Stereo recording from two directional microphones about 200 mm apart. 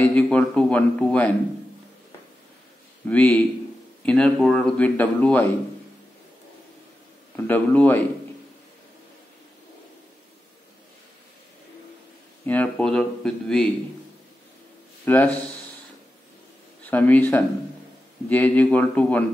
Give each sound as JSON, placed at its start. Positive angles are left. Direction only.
{"t": 0.0, "sound": "a man's voice", "side_deg": 5}
{"t": 3.1, "sound": "a man's voice", "side_deg": 10}
{"t": 7.3, "sound": "a man's voice", "side_deg": 10}
{"t": 12.4, "sound": "speech", "side_deg": 5}
{"t": 15.0, "sound": "a man's voice", "side_deg": 10}
{"t": 16.9, "sound": "a man's voice", "side_deg": 10}